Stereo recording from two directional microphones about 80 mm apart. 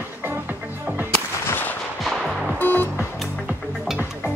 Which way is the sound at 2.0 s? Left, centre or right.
Centre.